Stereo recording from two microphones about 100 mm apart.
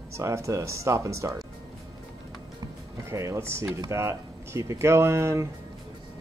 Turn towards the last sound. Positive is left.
turn(degrees=-30)  # may be behind; listen again after turning